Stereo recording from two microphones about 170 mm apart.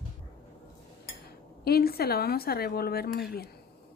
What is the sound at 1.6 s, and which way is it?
A woman's voice, 65° left (ahead or behind).